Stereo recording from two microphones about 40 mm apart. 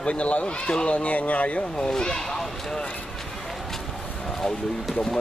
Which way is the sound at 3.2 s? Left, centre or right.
Centre.